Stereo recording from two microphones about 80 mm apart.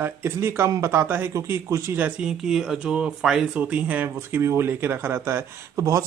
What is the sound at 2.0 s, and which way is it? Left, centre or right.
Speech, centre.